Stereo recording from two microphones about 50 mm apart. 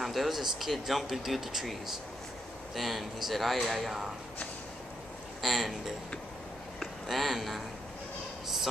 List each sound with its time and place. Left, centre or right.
0.0 s speech: centre
5.4 s speech: centre